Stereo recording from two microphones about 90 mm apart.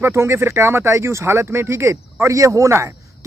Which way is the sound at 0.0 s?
30° right (ahead or behind).